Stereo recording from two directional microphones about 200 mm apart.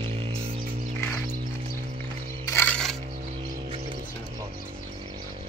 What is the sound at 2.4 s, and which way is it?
Crushing, 10° left (ahead or behind).